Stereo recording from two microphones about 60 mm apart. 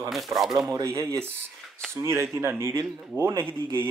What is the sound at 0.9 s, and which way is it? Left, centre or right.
Speech, right.